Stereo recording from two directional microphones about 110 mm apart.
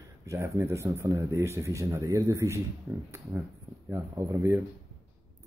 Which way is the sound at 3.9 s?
25° right (ahead or behind).